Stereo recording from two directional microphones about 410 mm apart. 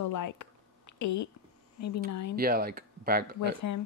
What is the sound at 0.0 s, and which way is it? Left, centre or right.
Speech, left.